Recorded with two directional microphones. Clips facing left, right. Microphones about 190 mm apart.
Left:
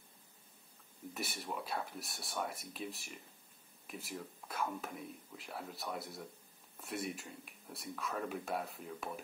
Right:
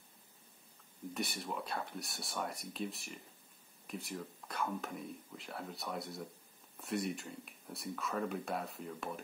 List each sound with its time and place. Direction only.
1.1 s speech: centre (ahead or behind)